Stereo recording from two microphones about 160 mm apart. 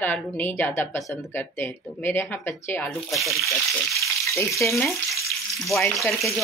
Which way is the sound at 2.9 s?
Centre (ahead or behind).